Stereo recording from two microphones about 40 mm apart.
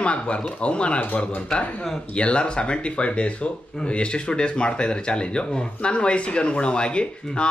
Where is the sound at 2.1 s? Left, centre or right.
Left.